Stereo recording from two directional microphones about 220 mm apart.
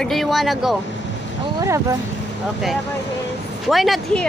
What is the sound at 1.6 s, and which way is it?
Speech, 15° right (ahead or behind).